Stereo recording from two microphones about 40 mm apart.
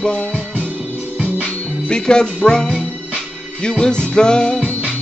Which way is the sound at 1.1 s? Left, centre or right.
Right.